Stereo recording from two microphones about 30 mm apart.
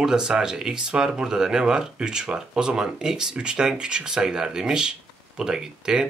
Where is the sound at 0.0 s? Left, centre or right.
Right.